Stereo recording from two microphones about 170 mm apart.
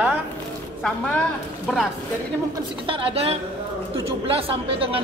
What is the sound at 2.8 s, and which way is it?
A woman's voice, 30° right (ahead or behind).